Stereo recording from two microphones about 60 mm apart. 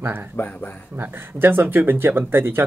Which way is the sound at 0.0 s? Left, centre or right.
Right.